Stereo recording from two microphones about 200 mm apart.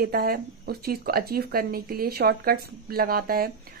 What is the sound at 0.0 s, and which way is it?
A woman's voice, 50° right (ahead or behind).